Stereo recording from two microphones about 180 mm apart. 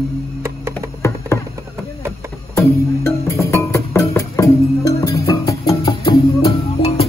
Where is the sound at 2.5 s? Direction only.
15° left (ahead or behind).